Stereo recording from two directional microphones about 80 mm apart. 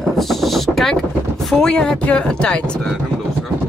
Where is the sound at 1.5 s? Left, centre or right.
Centre.